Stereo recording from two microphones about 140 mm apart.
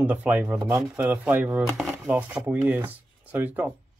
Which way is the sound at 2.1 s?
15° right (ahead or behind).